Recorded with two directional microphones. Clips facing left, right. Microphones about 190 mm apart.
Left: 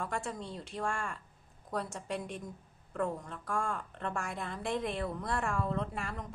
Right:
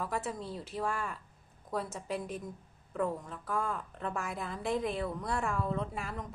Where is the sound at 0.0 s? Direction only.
5° right (ahead or behind).